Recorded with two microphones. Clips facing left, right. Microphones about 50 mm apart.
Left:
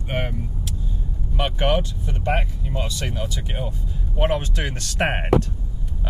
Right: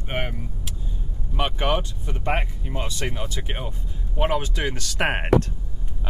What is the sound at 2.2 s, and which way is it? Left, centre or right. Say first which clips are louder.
Speech: left 2 dB; right.